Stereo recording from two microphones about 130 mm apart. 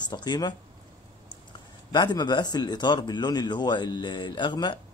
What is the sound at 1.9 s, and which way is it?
Speech, 35° left (ahead or behind).